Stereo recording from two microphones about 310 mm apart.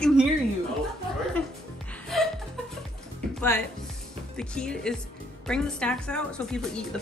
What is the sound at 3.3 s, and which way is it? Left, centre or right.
Speech, centre.